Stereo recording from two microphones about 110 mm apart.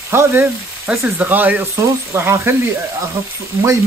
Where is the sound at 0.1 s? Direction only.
25° right (ahead or behind).